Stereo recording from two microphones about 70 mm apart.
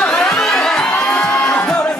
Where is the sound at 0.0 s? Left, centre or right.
Centre.